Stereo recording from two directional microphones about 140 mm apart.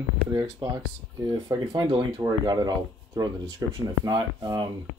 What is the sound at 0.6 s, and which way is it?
Speech, 30° right (ahead or behind).